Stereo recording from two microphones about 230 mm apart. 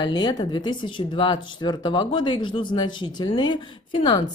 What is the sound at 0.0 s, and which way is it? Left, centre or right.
Speech, centre.